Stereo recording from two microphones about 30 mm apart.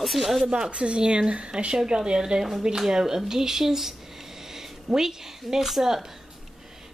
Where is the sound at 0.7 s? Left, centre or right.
Right.